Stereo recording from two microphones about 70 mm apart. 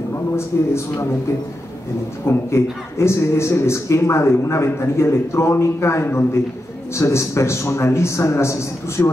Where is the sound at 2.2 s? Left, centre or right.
Left.